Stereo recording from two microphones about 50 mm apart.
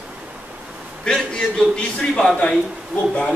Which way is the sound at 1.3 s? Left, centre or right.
Centre.